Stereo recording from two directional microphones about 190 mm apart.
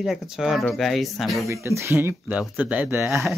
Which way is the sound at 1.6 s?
15° right (ahead or behind).